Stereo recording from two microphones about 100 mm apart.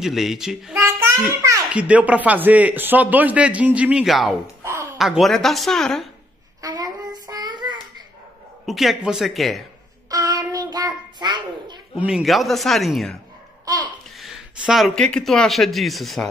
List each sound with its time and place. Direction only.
0.0 s speech: 5° right (ahead or behind)
0.7 s child singing: 30° right (ahead or behind)
1.7 s a man's voice: 15° right (ahead or behind)
4.0 s speech: centre (ahead or behind)
4.6 s a sound: 25° right (ahead or behind)
4.9 s speech: centre (ahead or behind)
6.6 s child singing: 40° right (ahead or behind)
8.6 s speech: centre (ahead or behind)
10.0 s child singing: 40° right (ahead or behind)
11.1 s babbling: 50° right (ahead or behind)
12.0 s speech: 5° right (ahead or behind)
13.7 s babbling: 40° right (ahead or behind)
14.6 s speech: 5° right (ahead or behind)